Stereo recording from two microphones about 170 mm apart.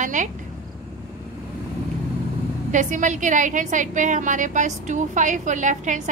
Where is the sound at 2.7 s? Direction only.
50° right (ahead or behind).